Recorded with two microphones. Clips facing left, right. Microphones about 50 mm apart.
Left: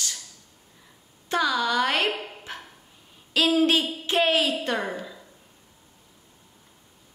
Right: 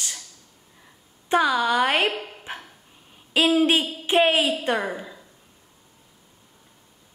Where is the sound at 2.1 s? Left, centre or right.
Centre.